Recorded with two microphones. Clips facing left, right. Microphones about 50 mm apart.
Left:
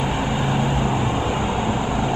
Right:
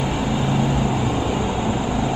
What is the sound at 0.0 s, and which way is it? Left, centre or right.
Vehicle, centre.